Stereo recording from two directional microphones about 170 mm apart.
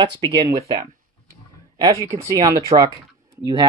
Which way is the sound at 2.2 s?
20° right (ahead or behind).